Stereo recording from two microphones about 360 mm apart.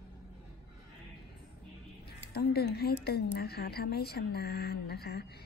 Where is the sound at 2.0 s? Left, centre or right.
Left.